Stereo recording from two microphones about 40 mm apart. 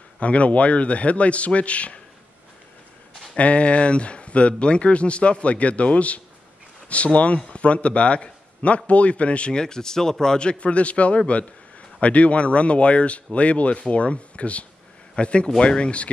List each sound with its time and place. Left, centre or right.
0.2 s a man's voice: left
3.3 s a man's voice: left